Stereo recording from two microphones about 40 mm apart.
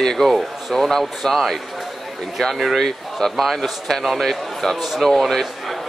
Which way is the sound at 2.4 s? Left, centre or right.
Centre.